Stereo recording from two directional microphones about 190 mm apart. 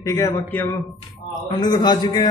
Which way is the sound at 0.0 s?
15° left (ahead or behind).